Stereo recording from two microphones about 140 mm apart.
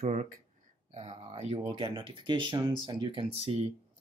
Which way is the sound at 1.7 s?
35° right (ahead or behind).